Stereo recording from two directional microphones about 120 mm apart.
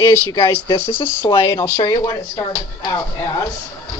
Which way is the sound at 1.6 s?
25° left (ahead or behind).